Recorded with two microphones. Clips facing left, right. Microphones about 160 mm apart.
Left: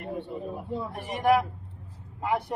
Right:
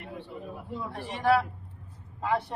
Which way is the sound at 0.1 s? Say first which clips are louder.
Left 6 dB; 40° left (ahead or behind).